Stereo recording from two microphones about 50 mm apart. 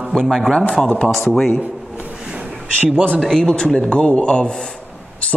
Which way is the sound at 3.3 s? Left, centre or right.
Centre.